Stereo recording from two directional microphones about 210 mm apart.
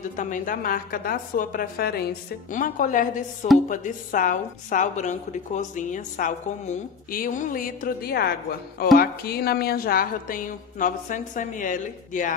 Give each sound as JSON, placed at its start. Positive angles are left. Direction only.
{"t": 0.1, "sound": "a woman's voice", "side_deg": 40}